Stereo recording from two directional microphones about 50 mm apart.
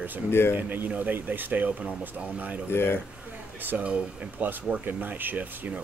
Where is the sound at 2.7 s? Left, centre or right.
Left.